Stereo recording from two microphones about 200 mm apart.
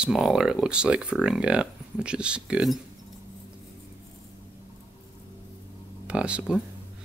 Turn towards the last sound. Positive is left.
turn(degrees=-5)  # may be behind; listen again after turning